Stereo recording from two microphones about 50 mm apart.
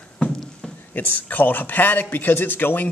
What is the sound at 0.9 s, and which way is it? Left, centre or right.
Speech, left.